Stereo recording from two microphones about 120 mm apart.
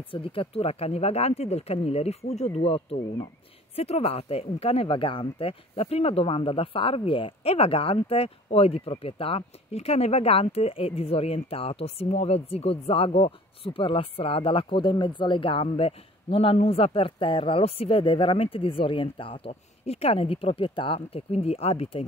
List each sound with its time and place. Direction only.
0.1 s speech: 50° left (ahead or behind)